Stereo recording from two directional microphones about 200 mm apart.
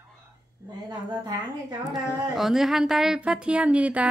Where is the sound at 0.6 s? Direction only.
20° right (ahead or behind).